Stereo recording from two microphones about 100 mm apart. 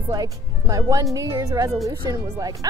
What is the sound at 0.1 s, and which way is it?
Speech, 35° right (ahead or behind).